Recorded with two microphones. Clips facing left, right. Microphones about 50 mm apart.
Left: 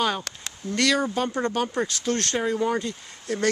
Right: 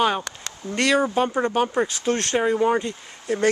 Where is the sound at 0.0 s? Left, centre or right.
Centre.